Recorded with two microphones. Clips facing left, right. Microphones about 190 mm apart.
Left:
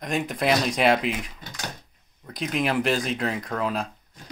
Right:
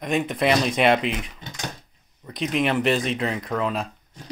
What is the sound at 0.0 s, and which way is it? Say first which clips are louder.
Speech: right 3 dB; centre (ahead or behind).